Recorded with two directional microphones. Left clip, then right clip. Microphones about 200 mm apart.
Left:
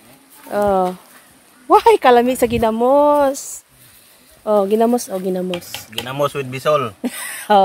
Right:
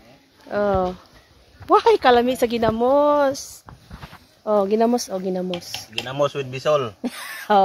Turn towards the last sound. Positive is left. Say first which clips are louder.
# left 4 dB
turn(degrees=15)  # may be behind; listen again after turning